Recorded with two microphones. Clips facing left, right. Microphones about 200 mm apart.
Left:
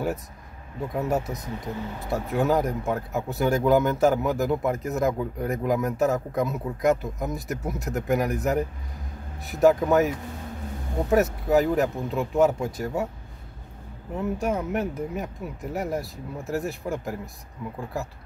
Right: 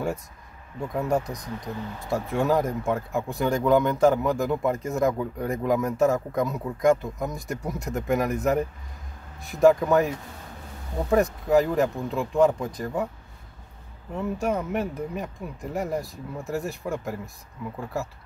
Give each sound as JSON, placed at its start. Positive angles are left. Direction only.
{"t": 0.7, "sound": "speech", "side_deg": 5}
{"t": 1.2, "sound": "speech", "side_deg": 25}
{"t": 2.0, "sound": "speech", "side_deg": 0}
{"t": 14.1, "sound": "speech", "side_deg": 0}